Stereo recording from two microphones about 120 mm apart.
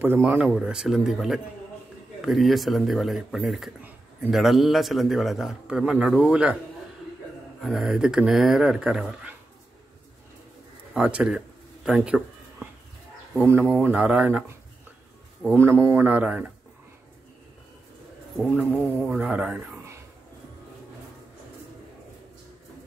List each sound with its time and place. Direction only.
0.3 s a man's voice: 10° right (ahead or behind)
7.6 s a man's voice: 5° right (ahead or behind)
10.9 s a sound: 10° right (ahead or behind)
13.3 s speech: 15° right (ahead or behind)
15.4 s speech: 20° right (ahead or behind)
18.4 s speech: 10° right (ahead or behind)